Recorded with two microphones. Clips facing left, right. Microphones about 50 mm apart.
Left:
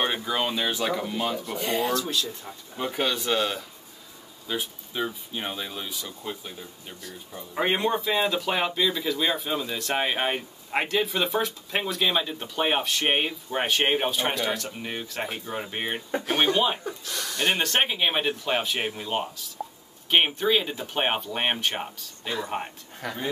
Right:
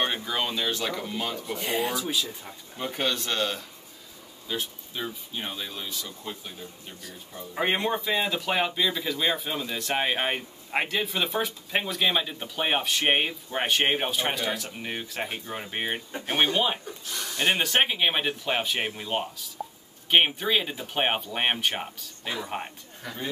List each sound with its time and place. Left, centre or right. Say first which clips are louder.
0.0 s speech: left 2 dB; centre
2.8 s speech: left 2 dB; centre
23.0 s speech: left 5 dB; left